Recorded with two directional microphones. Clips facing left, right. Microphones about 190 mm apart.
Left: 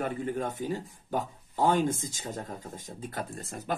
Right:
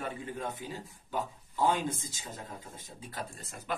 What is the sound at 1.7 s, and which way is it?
Speech, 50° left (ahead or behind).